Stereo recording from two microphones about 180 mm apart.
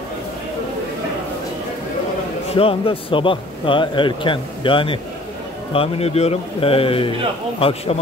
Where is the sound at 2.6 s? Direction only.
30° left (ahead or behind).